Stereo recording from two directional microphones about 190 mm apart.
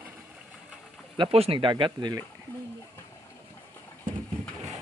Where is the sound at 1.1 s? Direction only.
30° right (ahead or behind).